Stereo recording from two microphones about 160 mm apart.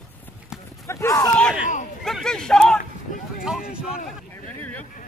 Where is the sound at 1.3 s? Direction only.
5° left (ahead or behind).